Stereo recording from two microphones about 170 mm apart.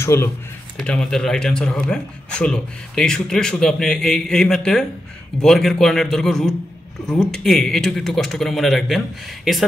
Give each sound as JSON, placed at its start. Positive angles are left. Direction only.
{"t": 0.0, "sound": "speech", "side_deg": 15}
{"t": 0.7, "sound": "speech", "side_deg": 5}